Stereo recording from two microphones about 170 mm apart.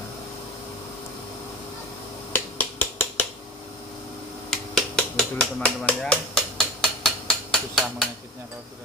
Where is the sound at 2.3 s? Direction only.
10° left (ahead or behind).